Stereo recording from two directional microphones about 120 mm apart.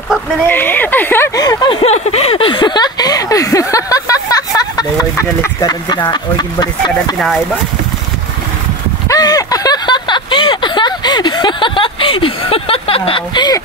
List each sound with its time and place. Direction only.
0.5 s speech: 15° left (ahead or behind)
1.3 s speech: 30° left (ahead or behind)
1.9 s a sound: 60° left (ahead or behind); by 4.8 s 30° left (ahead or behind)
5.6 s speech: 35° left (ahead or behind)
7.2 s speech: 5° left (ahead or behind)
9.1 s a sound: 30° left (ahead or behind)